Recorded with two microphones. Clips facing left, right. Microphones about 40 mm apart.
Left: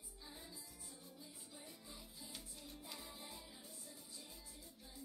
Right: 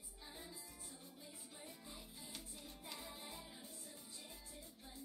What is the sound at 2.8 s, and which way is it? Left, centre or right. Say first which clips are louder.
Music: right 3 dB; centre.